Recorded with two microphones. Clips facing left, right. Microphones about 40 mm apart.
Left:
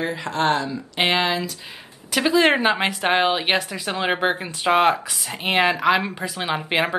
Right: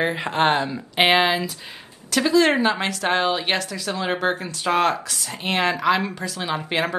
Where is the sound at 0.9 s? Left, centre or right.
Centre.